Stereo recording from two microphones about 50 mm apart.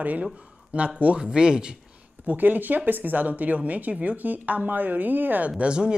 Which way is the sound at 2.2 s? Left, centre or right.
Right.